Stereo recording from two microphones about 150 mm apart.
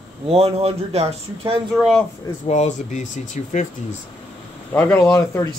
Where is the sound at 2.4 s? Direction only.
50° left (ahead or behind).